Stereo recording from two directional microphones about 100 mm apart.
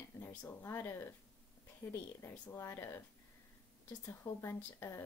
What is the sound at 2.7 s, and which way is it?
Speech, 25° left (ahead or behind).